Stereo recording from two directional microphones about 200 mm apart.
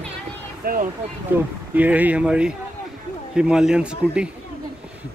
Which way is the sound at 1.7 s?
10° right (ahead or behind).